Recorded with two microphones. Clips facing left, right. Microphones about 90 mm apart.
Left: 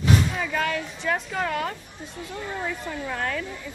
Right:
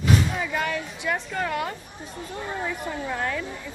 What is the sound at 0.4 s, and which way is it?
Speech, 10° right (ahead or behind).